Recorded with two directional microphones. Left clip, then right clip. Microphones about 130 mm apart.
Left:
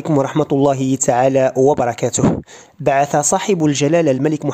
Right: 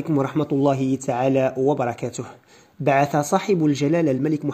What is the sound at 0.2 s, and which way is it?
Speech, 45° left (ahead or behind).